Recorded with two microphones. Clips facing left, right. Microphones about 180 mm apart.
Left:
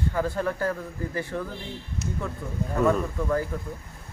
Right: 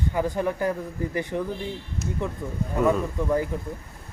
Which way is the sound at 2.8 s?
15° right (ahead or behind).